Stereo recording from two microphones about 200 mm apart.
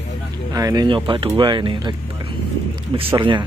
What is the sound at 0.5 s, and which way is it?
Speech, 20° right (ahead or behind).